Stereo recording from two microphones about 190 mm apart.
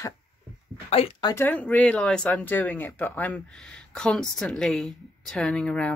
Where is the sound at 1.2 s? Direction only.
10° left (ahead or behind).